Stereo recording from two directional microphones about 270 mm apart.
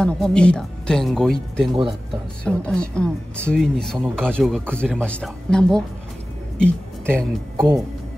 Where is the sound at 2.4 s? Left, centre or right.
Centre.